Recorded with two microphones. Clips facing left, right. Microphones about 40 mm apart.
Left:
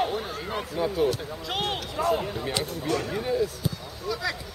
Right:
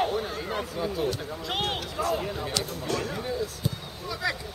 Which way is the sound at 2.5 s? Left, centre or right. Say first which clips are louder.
Left 2 dB; centre.